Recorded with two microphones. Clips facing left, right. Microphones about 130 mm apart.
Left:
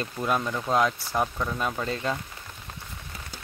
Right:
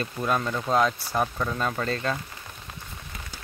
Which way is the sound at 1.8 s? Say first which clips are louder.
Right 1 dB; 15° left (ahead or behind).